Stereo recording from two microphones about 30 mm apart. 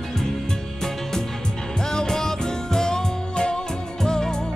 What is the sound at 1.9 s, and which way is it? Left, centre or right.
Music, centre.